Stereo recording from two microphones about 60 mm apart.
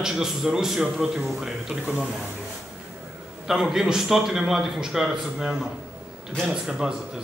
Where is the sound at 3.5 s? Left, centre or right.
Centre.